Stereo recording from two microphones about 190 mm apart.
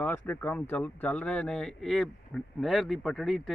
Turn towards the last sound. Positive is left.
turn(degrees=0)  # may be behind; listen again after turning